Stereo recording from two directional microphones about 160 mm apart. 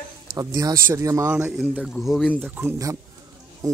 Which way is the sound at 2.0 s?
Centre (ahead or behind).